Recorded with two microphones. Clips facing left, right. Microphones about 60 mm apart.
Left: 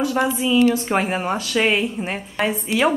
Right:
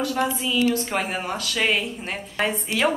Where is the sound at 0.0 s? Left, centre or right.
Centre.